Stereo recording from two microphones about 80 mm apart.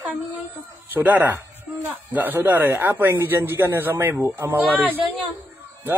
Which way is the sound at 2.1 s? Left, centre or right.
Right.